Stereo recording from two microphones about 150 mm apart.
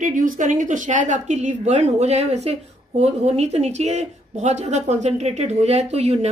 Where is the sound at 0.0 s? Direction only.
60° right (ahead or behind).